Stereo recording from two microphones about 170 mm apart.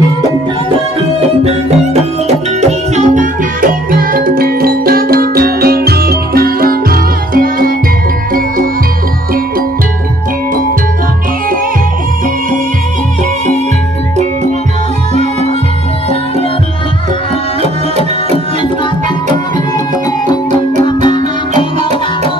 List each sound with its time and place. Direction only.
2.2 s music: 40° right (ahead or behind)
20.5 s music: 30° left (ahead or behind)